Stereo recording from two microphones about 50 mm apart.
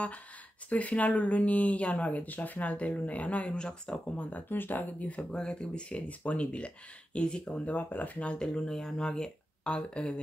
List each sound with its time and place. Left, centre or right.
0.7 s speech: left
3.5 s speech: centre
4.2 s speech: left
5.3 s speech: centre
7.6 s speech: left